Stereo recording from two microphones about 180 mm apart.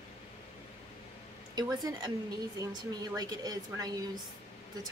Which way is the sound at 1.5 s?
25° right (ahead or behind).